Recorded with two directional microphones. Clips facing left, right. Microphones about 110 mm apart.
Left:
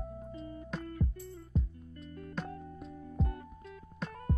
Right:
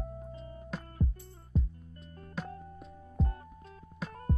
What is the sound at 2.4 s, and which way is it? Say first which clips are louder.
Music: right 1 dB; 5° right (ahead or behind).